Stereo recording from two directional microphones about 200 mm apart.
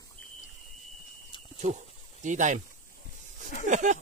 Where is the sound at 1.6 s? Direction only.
35° right (ahead or behind).